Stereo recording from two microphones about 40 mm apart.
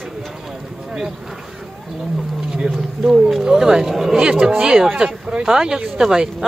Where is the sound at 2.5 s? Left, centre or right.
Centre.